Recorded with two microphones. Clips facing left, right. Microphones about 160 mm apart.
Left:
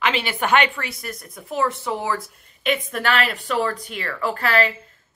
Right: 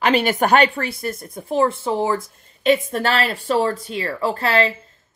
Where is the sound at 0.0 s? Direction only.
45° right (ahead or behind).